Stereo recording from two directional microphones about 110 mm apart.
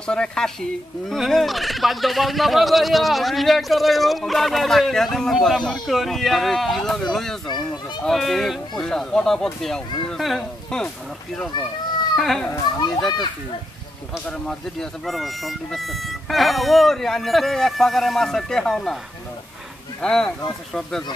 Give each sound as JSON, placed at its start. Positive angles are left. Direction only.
{"t": 0.0, "sound": "turkey", "side_deg": 5}
{"t": 12.2, "sound": "turkey", "side_deg": 0}
{"t": 12.4, "sound": "a child's voice", "side_deg": 35}
{"t": 14.2, "sound": "turkey", "side_deg": 5}
{"t": 20.0, "sound": "turkey", "side_deg": 5}